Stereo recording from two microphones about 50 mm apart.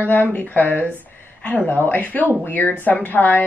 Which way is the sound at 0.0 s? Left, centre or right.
Left.